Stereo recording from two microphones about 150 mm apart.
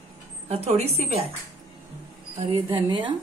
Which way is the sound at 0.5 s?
45° right (ahead or behind).